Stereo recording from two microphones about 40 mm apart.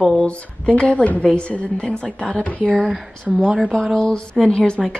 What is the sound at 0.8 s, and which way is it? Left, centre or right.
A woman's voice, left.